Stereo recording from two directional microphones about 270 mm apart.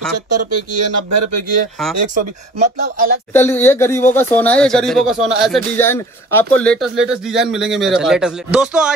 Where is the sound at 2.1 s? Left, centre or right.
Right.